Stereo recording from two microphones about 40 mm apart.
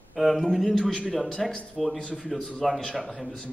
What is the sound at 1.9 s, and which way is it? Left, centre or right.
Speech, left.